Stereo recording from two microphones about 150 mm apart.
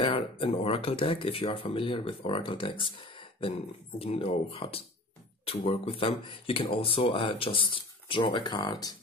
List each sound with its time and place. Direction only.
0.0 s speech: 40° left (ahead or behind)